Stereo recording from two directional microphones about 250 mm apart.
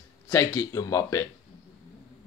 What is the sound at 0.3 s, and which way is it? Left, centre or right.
Speech, centre.